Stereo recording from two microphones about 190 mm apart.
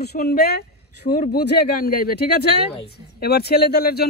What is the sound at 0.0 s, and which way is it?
A man's voice, 55° left (ahead or behind).